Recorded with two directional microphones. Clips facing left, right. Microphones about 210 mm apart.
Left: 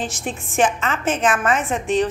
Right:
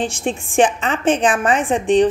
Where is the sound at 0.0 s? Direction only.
30° right (ahead or behind).